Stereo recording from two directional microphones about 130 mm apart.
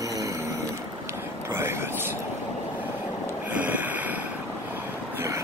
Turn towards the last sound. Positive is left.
turn(degrees=-15)  # may be behind; listen again after turning